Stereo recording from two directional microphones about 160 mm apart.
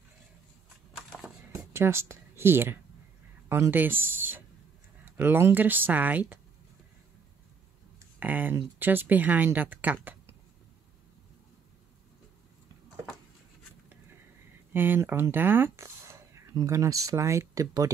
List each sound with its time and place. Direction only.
0.9 s a sound: centre (ahead or behind)
1.7 s speech: 15° right (ahead or behind)
8.2 s speech: 10° right (ahead or behind)
14.7 s speech: 15° right (ahead or behind)